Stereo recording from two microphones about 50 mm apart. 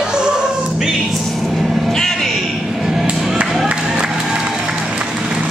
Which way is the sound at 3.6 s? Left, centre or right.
Centre.